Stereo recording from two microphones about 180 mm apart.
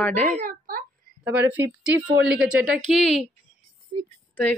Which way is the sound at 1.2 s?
10° right (ahead or behind).